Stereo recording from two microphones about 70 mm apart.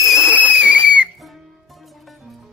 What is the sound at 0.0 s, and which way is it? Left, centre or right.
Whistle, centre.